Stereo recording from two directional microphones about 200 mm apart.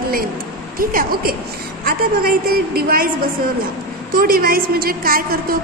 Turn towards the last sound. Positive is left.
turn(degrees=-45)  # may be behind; listen again after turning